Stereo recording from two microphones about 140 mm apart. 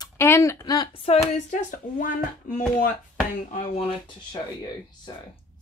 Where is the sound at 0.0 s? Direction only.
20° left (ahead or behind).